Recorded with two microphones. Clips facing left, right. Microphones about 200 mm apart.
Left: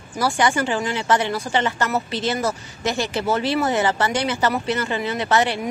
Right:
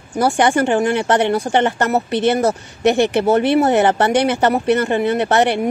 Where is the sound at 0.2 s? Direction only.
60° right (ahead or behind).